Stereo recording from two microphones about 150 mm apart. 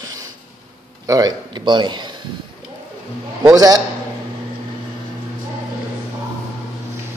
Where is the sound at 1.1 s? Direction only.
25° right (ahead or behind).